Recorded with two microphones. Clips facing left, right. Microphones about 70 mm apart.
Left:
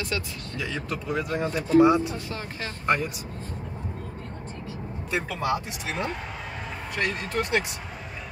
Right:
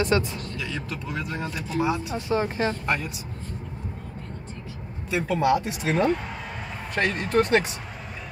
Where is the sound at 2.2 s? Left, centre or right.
Right.